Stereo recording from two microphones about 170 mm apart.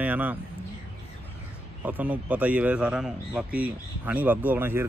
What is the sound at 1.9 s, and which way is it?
Speech, 10° right (ahead or behind).